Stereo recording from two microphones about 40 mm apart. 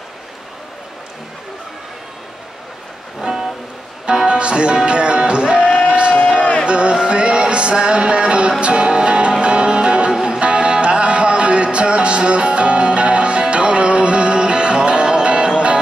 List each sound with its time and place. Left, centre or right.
3.2 s music: centre
4.0 s music: right
5.9 s a sound: right
6.4 s music: left
6.7 s music: right
10.1 s music: centre
10.4 s music: right